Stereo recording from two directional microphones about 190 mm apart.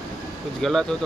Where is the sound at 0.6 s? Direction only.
Centre (ahead or behind).